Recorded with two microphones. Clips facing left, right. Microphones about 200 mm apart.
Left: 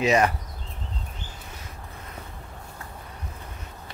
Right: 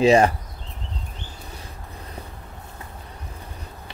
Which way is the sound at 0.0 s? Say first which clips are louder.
Right 6 dB; 30° right (ahead or behind).